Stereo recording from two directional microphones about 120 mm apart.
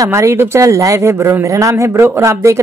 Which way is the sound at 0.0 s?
25° right (ahead or behind).